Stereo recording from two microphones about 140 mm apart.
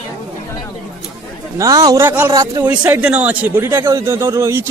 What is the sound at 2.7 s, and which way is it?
A man's voice, 10° right (ahead or behind).